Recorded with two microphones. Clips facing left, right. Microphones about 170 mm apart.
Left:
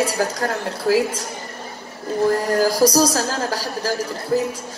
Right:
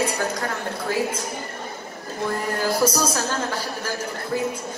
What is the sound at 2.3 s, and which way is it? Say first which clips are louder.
A man's voice: left 5 dB; 35° left (ahead or behind).